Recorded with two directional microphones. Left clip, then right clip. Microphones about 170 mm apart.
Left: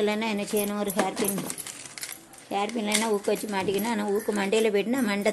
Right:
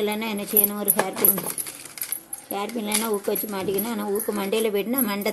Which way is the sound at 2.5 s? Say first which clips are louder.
Left 1 dB; centre (ahead or behind).